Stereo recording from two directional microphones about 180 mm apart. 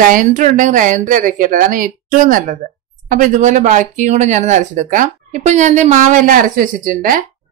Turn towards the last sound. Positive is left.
turn(degrees=-50)  # may be behind; listen again after turning